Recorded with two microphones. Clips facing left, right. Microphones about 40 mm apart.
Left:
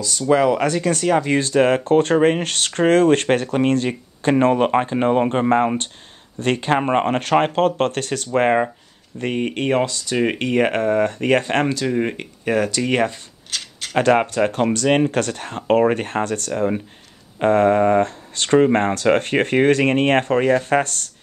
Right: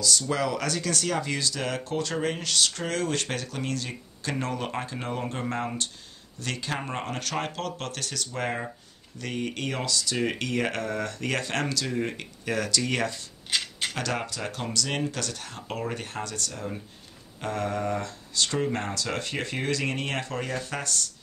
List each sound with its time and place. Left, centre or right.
0.0 s speech: left
1.4 s speech: left
9.2 s speech: left
13.5 s a sound: centre
13.9 s speech: left